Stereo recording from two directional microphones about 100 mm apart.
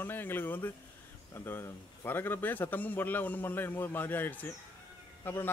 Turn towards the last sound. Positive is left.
turn(degrees=20)  # may be behind; listen again after turning